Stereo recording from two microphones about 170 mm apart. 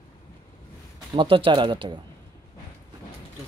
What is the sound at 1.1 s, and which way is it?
Speech, 30° right (ahead or behind).